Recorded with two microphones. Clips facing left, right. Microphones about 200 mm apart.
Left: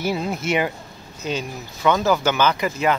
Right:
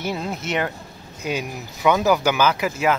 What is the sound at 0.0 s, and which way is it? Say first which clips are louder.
Speech: left 3 dB; 5° left (ahead or behind).